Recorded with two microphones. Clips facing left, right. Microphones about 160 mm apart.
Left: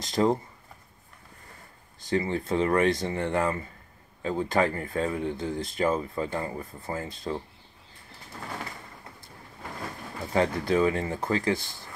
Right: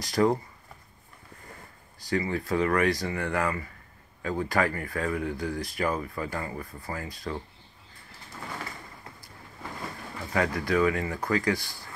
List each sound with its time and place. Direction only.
0.0 s speech: 25° left (ahead or behind)
2.0 s speech: 25° left (ahead or behind)
10.3 s speech: 30° left (ahead or behind)